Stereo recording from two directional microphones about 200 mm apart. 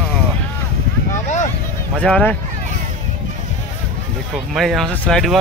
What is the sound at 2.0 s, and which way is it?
Speech, 5° left (ahead or behind).